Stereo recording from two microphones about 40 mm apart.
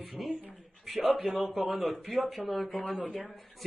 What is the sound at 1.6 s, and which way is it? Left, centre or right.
Speech, right.